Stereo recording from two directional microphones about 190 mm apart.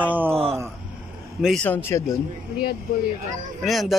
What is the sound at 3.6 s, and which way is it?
Speech, centre (ahead or behind).